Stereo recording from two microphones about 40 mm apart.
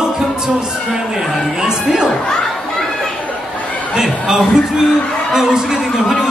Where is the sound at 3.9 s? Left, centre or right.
Centre.